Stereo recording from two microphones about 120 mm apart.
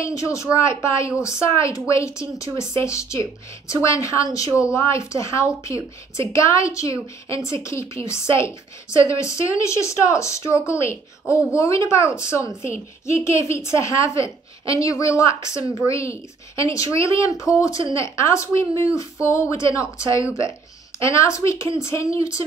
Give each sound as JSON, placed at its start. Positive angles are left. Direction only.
{"t": 0.0, "sound": "a woman's voice", "side_deg": 25}
{"t": 15.6, "sound": "speech", "side_deg": -35}
{"t": 15.9, "sound": "a woman's voice", "side_deg": 25}